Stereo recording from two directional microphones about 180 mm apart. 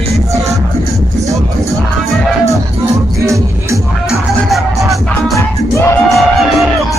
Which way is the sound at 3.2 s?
15° right (ahead or behind).